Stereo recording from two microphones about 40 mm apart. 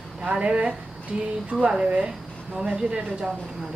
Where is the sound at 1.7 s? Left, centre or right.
Centre.